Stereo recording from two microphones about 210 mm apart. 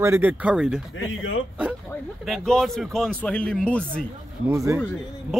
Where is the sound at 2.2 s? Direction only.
Centre (ahead or behind).